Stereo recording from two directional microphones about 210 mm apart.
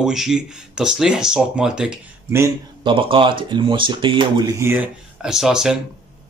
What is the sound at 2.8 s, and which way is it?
Speech, 25° right (ahead or behind).